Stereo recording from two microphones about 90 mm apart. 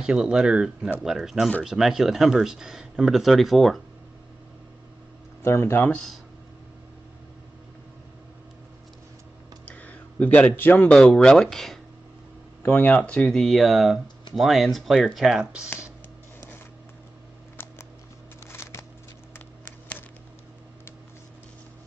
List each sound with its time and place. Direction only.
0.0 s speech: 10° right (ahead or behind)
5.4 s speech: 30° left (ahead or behind)
9.7 s a sound: 15° left (ahead or behind)
10.9 s speech: 10° left (ahead or behind)
12.6 s speech: 20° left (ahead or behind); by 15.7 s 10° right (ahead or behind)
18.5 s a sound: 30° left (ahead or behind)